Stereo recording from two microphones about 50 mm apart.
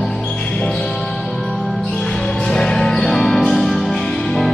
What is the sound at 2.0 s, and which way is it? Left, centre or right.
Music, centre.